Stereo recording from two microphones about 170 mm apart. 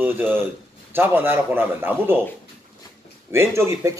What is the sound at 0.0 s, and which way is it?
A man's voice, 10° right (ahead or behind).